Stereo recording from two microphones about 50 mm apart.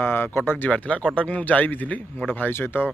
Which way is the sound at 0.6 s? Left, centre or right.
Left.